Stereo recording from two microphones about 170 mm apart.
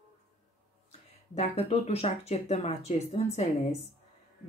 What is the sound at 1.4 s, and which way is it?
Speech, 40° left (ahead or behind).